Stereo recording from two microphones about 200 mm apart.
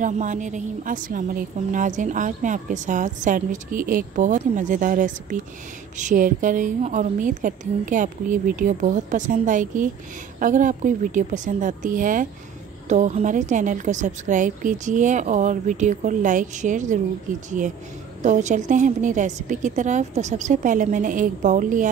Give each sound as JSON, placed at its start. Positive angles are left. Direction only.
{"t": 0.0, "sound": "a woman's voice", "side_deg": -40}